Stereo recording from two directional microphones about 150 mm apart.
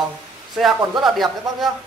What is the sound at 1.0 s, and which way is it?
Speech, centre (ahead or behind).